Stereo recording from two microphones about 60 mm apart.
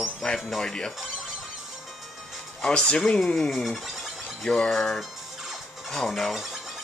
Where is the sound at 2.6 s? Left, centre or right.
Centre.